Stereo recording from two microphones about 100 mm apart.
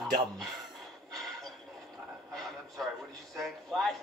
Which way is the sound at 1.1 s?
Centre (ahead or behind).